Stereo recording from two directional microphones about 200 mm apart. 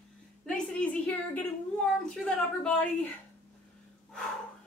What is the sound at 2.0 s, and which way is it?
A woman's voice, 5° left (ahead or behind).